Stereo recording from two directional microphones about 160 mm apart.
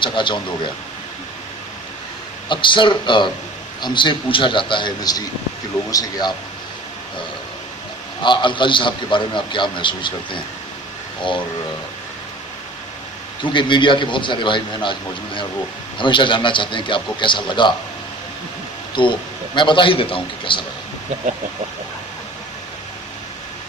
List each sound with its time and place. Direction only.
0.0 s speech: 30° left (ahead or behind)
2.4 s a man's voice: 30° left (ahead or behind)
8.2 s a man's voice: 30° left (ahead or behind)
13.4 s a man's voice: 30° left (ahead or behind)
18.9 s a man's voice: 30° left (ahead or behind)